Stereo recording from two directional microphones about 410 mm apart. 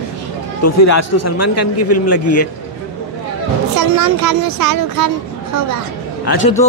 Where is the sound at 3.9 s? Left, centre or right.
Right.